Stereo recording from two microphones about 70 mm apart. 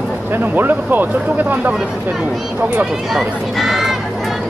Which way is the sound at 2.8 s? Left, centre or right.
Centre.